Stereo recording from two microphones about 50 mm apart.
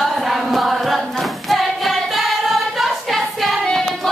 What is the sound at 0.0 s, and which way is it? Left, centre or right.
Choir, centre.